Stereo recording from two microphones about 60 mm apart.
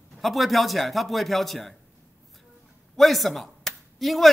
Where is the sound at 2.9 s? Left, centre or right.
Centre.